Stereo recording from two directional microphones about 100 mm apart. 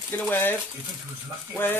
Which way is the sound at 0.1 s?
20° left (ahead or behind).